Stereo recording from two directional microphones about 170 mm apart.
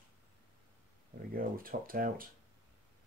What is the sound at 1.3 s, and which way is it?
Speech, 55° right (ahead or behind).